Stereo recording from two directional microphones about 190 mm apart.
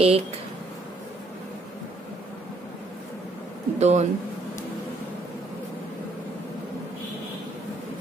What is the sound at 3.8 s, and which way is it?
Speech, 35° right (ahead or behind).